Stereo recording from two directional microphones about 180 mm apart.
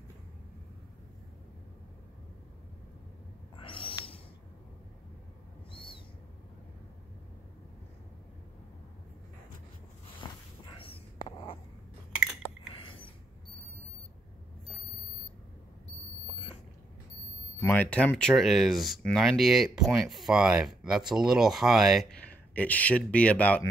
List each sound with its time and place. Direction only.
3.6 s owl: 30° left (ahead or behind)
5.7 s owl: 30° left (ahead or behind)
10.3 s a sound: 25° left (ahead or behind)
10.8 s whispering: 30° left (ahead or behind)
12.1 s chewing: 5° right (ahead or behind)
12.4 s a sound: 30° left (ahead or behind)
17.6 s speech: 10° left (ahead or behind)
22.3 s speech: 10° left (ahead or behind)